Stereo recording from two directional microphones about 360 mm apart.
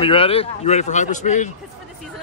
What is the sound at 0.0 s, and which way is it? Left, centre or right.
Speech, centre.